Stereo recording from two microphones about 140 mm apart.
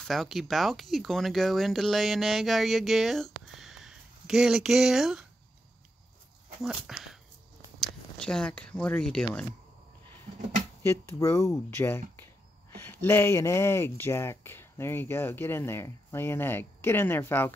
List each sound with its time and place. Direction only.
0.0 s speech: centre (ahead or behind)
6.6 s speech: 5° right (ahead or behind)
8.2 s speech: 5° left (ahead or behind)
10.8 s speech: 15° left (ahead or behind)